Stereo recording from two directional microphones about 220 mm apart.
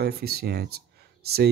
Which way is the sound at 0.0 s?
45° right (ahead or behind).